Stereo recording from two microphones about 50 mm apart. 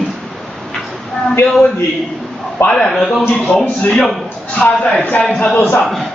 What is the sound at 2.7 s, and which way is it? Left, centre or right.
Speech, centre.